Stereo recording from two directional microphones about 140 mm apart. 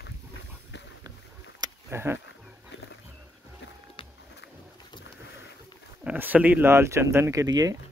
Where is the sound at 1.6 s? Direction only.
15° right (ahead or behind).